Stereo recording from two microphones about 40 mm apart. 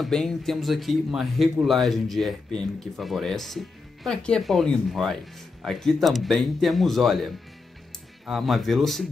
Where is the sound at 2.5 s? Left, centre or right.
Centre.